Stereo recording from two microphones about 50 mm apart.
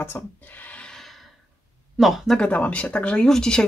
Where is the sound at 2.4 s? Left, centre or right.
Left; by 3.6 s centre.